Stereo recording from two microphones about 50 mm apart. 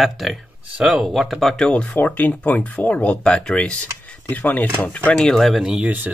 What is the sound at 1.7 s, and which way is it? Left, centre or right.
Speech, left.